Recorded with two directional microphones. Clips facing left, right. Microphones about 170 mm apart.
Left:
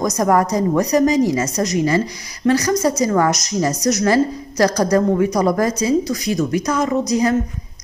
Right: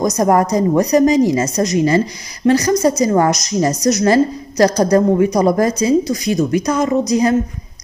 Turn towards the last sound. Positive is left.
turn(degrees=-20)  # may be behind; listen again after turning